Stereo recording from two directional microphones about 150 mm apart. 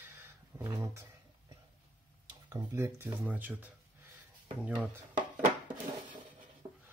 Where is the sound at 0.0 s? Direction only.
15° right (ahead or behind).